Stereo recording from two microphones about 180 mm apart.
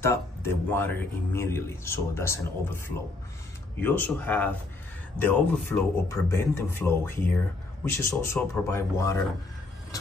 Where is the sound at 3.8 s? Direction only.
10° left (ahead or behind).